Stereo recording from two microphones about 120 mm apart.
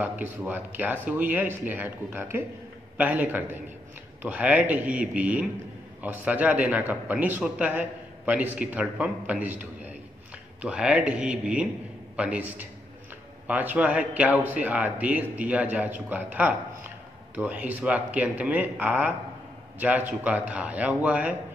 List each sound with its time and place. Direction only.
0.0 s a man's voice: 15° right (ahead or behind)